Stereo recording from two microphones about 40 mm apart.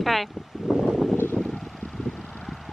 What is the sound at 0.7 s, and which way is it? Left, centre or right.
Wind, centre.